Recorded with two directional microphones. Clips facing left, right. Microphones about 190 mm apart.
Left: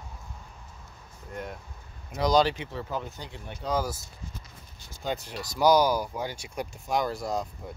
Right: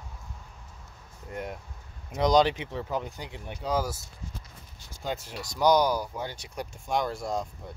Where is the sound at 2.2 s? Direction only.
20° right (ahead or behind).